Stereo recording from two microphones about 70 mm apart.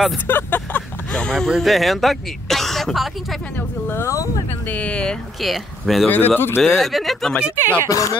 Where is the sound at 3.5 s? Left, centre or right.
Left.